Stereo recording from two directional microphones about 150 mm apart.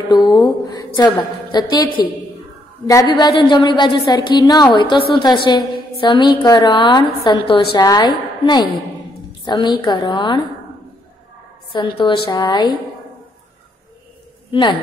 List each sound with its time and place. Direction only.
0.1 s a woman's voice: 25° left (ahead or behind)
2.9 s a woman's voice: 25° left (ahead or behind)
11.7 s a woman's voice: 30° left (ahead or behind)
14.5 s speech: 35° left (ahead or behind)